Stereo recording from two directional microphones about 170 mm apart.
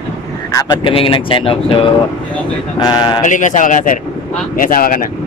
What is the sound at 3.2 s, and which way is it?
Speech, 45° left (ahead or behind).